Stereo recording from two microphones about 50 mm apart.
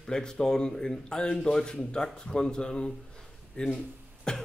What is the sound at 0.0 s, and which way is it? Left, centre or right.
Speech, centre.